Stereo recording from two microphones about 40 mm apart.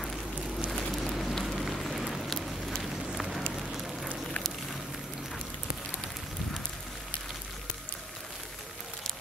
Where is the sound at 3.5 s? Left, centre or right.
Centre.